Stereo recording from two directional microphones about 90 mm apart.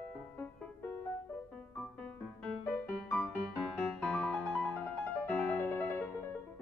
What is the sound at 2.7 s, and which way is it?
Music, 25° left (ahead or behind).